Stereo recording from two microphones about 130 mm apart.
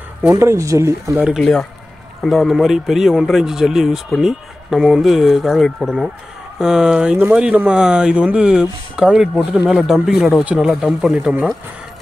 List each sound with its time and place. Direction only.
0.3 s speech: 20° right (ahead or behind)
1.2 s speech: centre (ahead or behind)